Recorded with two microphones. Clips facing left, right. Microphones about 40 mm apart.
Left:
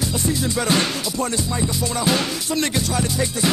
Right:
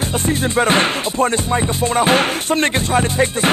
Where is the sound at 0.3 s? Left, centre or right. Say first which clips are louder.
Right 6 dB; right.